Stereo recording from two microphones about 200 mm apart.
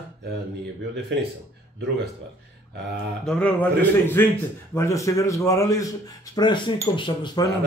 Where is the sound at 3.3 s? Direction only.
5° left (ahead or behind); by 7.4 s 25° left (ahead or behind).